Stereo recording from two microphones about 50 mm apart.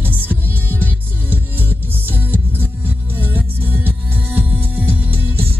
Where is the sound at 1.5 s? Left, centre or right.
Right.